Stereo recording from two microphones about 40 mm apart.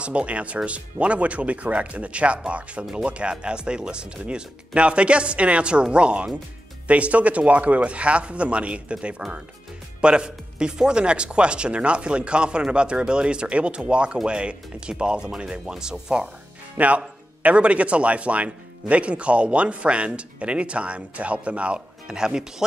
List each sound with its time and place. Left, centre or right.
0.0 s speech: right
2.8 s speech: centre
3.1 s speech: right
16.7 s speech: right; by 22.4 s centre